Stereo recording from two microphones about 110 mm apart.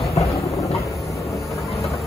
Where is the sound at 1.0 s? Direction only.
30° left (ahead or behind).